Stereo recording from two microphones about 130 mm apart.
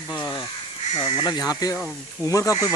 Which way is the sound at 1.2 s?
35° left (ahead or behind).